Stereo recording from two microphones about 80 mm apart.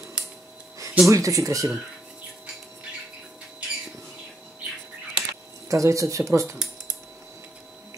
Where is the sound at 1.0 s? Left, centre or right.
Right.